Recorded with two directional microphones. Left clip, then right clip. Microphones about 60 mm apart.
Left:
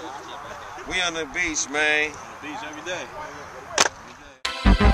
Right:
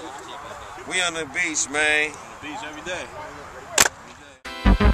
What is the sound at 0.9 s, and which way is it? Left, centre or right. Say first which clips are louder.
Speech: right 1 dB; centre.